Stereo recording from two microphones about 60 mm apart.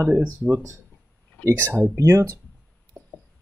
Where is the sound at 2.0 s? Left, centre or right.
Right.